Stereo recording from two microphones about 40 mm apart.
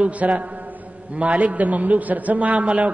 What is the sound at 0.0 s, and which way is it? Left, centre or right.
A man's voice, right.